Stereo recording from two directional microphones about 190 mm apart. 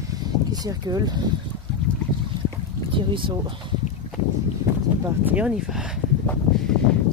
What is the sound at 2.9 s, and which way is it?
Speech, 25° right (ahead or behind).